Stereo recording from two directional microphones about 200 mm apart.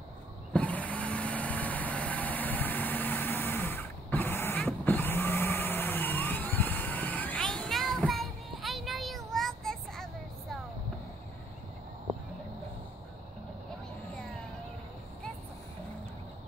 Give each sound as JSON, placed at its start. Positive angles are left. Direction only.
{"t": 0.5, "sound": "vehicle", "side_deg": 5}